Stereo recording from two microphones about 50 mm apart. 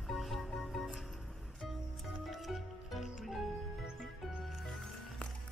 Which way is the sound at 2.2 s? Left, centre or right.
Centre.